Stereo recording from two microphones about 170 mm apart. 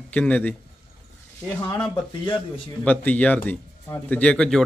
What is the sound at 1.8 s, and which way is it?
Speech, 10° left (ahead or behind).